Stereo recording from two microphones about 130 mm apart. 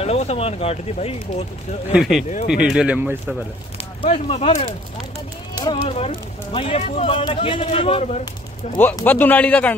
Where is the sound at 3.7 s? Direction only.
50° left (ahead or behind).